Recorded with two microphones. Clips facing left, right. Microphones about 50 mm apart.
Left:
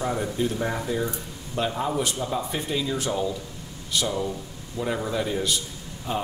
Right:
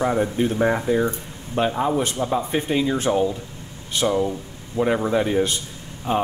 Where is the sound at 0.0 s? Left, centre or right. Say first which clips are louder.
Right 5 dB; right.